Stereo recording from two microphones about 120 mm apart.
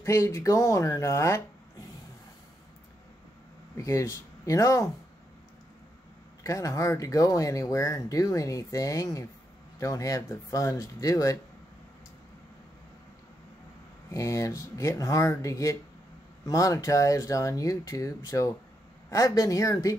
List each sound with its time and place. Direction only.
0.0 s speech: 25° left (ahead or behind)
3.7 s speech: 25° left (ahead or behind)
6.4 s speech: 25° left (ahead or behind)
14.1 s speech: 25° left (ahead or behind)